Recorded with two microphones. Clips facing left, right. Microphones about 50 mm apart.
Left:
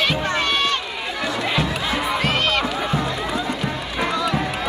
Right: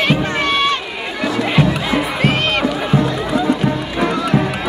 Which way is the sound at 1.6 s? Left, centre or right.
Right.